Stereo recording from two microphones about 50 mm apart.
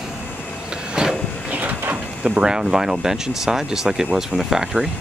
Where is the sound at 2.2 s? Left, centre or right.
Centre.